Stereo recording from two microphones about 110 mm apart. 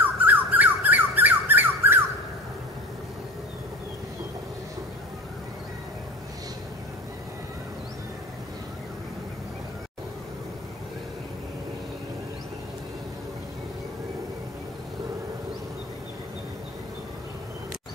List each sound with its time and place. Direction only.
0.2 s squawk: 15° right (ahead or behind)